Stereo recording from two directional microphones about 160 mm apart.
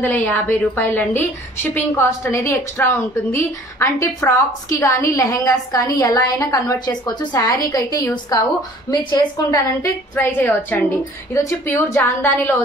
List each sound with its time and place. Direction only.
0.0 s a woman's voice: 15° left (ahead or behind)